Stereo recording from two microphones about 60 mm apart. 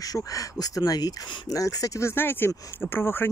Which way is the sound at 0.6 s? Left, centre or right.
Left.